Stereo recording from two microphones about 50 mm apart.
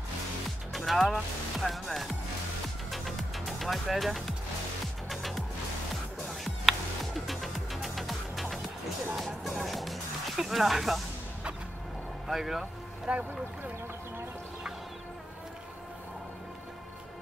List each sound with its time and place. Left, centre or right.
0.7 s speech: centre
2.9 s music: centre
12.3 s speech: centre
13.1 s speech: centre